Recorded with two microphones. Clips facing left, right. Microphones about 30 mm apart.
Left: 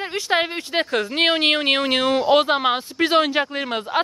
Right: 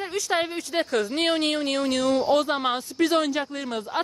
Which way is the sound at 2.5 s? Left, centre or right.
Left.